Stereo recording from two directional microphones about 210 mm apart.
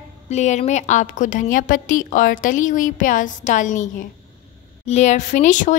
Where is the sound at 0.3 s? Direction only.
35° left (ahead or behind).